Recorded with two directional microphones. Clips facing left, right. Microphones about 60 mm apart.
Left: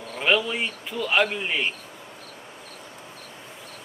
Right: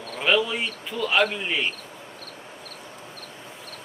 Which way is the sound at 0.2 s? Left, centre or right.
Centre.